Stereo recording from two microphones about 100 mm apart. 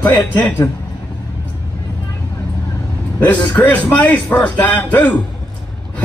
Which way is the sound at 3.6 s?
15° left (ahead or behind).